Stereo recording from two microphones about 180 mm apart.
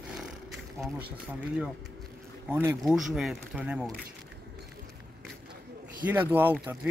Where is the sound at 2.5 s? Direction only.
15° right (ahead or behind).